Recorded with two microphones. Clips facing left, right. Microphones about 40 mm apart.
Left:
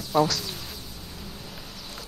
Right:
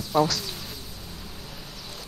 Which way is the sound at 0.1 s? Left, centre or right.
Centre.